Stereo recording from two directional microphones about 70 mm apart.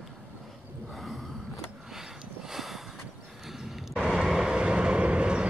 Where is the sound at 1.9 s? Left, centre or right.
Centre.